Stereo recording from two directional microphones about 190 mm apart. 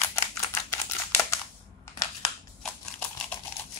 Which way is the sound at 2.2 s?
5° left (ahead or behind).